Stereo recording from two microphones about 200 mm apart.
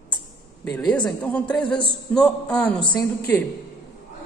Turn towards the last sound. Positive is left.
turn(degrees=15)  # may be behind; listen again after turning